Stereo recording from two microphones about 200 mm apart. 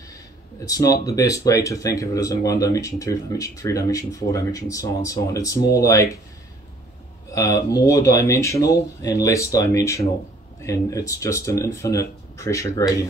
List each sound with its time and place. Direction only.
0.7 s speech: 20° left (ahead or behind)
7.2 s speech: 15° left (ahead or behind)